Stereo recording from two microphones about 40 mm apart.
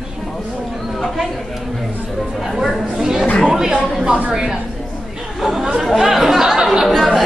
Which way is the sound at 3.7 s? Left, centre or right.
Right.